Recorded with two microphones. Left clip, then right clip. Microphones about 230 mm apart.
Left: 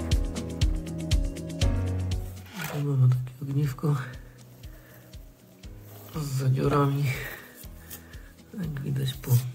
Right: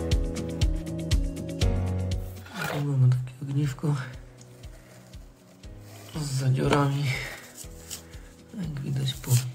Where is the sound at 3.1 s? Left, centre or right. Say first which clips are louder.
Even; left.